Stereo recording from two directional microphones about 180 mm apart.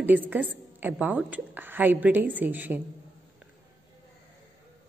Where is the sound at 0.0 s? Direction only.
10° right (ahead or behind).